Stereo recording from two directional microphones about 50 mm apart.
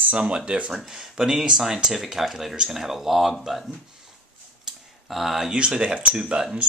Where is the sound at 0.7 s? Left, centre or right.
Centre.